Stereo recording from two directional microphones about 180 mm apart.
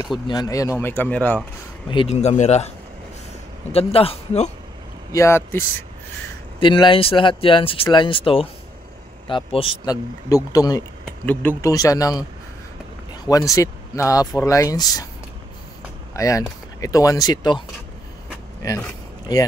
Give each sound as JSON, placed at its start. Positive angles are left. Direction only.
{"t": 0.3, "sound": "speech", "side_deg": 20}
{"t": 1.9, "sound": "speech", "side_deg": 35}
{"t": 3.7, "sound": "speech", "side_deg": 30}
{"t": 5.1, "sound": "speech", "side_deg": 15}
{"t": 6.6, "sound": "speech", "side_deg": 25}
{"t": 9.8, "sound": "speech", "side_deg": 20}
{"t": 11.1, "sound": "speech", "side_deg": 10}
{"t": 16.1, "sound": "speech", "side_deg": 20}